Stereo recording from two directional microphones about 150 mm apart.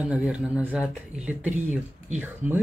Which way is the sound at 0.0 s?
10° right (ahead or behind).